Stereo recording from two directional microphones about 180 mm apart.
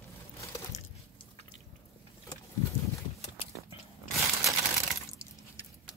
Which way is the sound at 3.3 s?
30° left (ahead or behind).